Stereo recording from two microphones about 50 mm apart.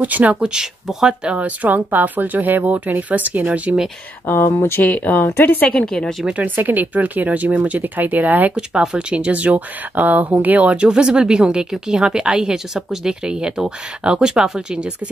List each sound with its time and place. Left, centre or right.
0.0 s speech: right
0.4 s speech: centre
4.6 s speech: left
4.8 s speech: left
5.7 s speech: centre
6.3 s speech: right
8.9 s speech: right
10.9 s speech: centre